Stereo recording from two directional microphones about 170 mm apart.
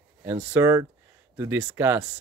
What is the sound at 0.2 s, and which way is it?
Speech, 10° right (ahead or behind).